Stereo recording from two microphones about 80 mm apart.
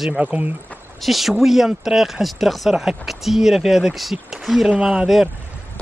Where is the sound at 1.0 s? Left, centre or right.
Centre.